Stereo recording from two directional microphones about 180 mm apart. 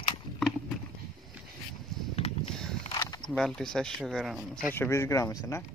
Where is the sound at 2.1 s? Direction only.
35° left (ahead or behind).